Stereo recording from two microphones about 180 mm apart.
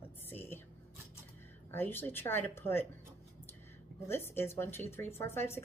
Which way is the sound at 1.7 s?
10° left (ahead or behind).